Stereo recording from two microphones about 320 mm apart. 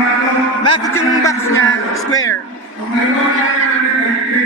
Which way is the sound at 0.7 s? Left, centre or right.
Centre.